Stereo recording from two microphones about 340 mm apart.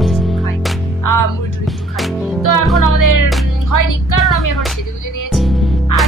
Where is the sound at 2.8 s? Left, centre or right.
Left.